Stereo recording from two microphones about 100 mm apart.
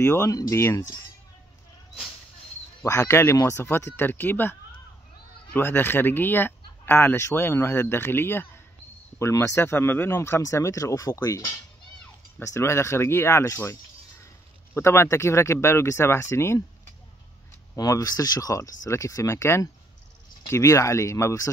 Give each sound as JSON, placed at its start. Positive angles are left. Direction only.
{"t": 0.0, "sound": "speech", "side_deg": 20}
{"t": 0.3, "sound": "speech", "side_deg": 30}
{"t": 2.8, "sound": "speech", "side_deg": 30}
{"t": 17.7, "sound": "speech", "side_deg": 35}